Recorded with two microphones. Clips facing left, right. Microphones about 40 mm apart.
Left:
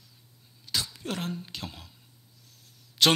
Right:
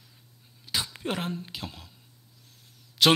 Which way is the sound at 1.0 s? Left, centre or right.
Right.